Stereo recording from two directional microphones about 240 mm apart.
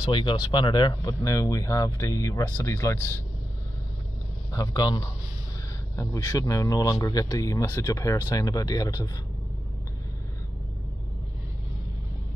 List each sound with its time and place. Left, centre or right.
0.0 s speech: centre
4.5 s speech: centre